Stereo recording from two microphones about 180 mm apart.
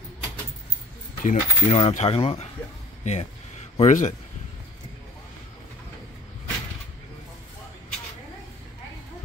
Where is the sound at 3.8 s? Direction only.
40° left (ahead or behind).